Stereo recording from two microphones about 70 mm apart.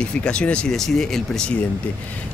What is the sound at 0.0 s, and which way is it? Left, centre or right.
Speech, centre.